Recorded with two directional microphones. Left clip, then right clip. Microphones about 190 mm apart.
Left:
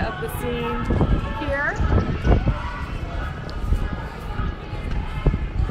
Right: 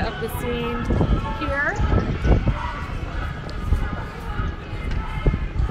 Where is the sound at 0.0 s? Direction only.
30° right (ahead or behind).